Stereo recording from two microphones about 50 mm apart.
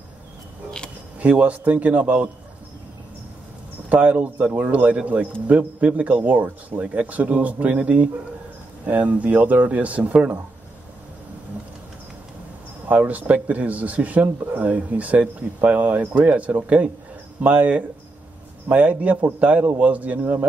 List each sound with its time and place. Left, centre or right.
1.2 s speech: right
3.9 s speech: right
12.8 s speech: right